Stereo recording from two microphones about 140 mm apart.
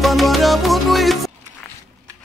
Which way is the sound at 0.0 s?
Centre (ahead or behind).